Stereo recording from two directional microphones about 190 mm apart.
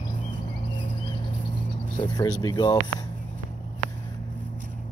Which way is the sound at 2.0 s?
20° left (ahead or behind).